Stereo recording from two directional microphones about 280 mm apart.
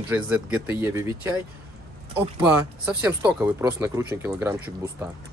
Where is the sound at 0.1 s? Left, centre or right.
Centre.